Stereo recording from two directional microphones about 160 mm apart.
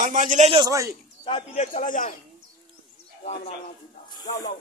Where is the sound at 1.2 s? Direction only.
40° left (ahead or behind).